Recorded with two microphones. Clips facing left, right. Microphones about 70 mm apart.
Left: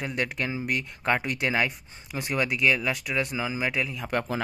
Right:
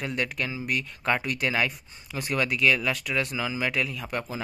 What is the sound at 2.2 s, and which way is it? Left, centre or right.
Speech, centre.